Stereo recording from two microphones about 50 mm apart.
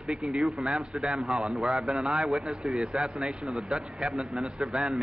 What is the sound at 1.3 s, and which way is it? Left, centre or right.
Speech, right.